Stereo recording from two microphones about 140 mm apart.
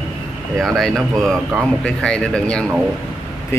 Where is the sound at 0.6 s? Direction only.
Centre (ahead or behind).